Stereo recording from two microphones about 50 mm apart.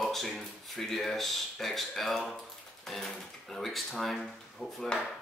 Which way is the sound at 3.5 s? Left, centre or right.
Centre.